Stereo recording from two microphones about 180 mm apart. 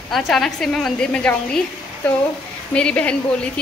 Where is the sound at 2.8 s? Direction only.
5° left (ahead or behind).